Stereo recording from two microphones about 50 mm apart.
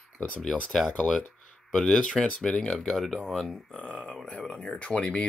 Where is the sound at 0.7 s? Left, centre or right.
Centre.